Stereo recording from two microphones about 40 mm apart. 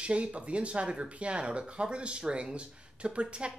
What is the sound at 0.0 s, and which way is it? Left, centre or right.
Speech, right.